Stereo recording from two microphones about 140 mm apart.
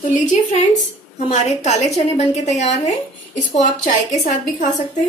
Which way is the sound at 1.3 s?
55° left (ahead or behind).